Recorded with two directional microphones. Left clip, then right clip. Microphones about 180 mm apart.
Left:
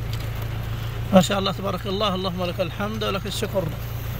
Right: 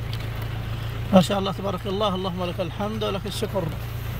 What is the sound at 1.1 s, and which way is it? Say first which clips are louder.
Speech: left 1 dB; 20° right (ahead or behind).